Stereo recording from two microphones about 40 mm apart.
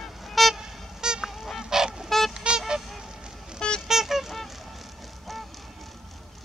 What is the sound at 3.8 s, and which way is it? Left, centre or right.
Vehicle, centre.